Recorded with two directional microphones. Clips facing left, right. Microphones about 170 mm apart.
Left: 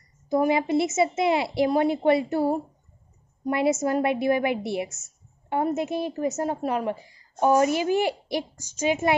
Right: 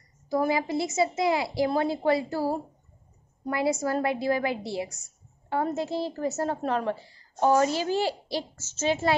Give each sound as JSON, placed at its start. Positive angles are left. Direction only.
{"t": 0.3, "sound": "a woman's voice", "side_deg": 20}